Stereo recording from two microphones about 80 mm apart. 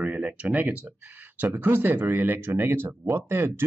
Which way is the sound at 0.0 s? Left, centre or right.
Centre.